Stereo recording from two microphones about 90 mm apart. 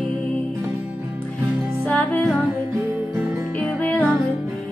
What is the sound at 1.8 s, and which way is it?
Music, 15° left (ahead or behind).